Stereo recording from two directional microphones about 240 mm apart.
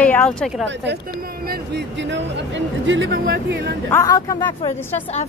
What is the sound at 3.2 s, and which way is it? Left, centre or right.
Speech, right.